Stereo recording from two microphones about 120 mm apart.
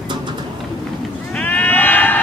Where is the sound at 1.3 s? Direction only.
10° left (ahead or behind).